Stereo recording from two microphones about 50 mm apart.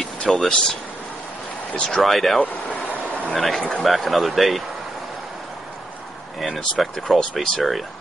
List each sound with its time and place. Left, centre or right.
0.0 s speech: centre
1.7 s speech: centre
2.0 s speech: centre
6.4 s speech: centre